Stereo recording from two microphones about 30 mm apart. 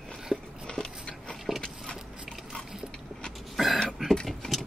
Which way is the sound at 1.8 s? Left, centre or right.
Centre.